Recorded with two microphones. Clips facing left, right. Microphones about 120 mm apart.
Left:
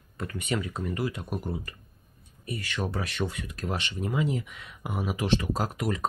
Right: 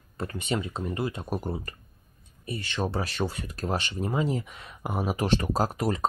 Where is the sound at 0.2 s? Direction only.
30° right (ahead or behind).